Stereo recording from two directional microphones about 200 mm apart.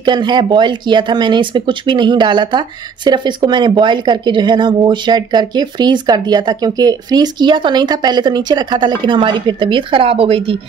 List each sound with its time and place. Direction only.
0.0 s speech: 20° right (ahead or behind)